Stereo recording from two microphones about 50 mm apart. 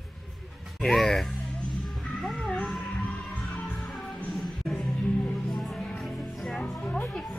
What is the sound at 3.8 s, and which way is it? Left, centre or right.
Music, centre.